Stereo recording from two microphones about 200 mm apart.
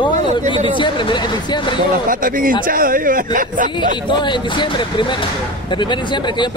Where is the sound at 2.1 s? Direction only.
45° right (ahead or behind).